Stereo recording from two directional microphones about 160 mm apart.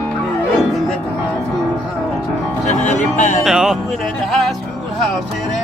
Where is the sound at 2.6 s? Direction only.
45° left (ahead or behind).